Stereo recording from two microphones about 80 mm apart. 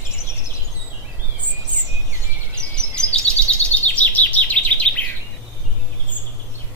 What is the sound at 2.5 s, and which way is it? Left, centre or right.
Bird vocalization, centre.